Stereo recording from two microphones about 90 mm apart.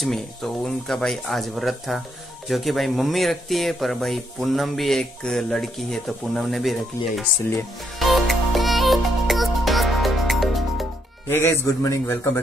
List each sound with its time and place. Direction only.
0.0 s speech: 5° left (ahead or behind)
8.0 s music: centre (ahead or behind)
11.2 s a man's voice: 25° left (ahead or behind)